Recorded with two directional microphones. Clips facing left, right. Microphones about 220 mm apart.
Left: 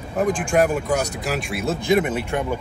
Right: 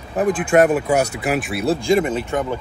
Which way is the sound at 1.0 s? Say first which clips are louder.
Right 4 dB; 65° right (ahead or behind).